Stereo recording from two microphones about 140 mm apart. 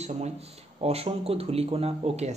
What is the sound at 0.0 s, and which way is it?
Speech, 50° right (ahead or behind).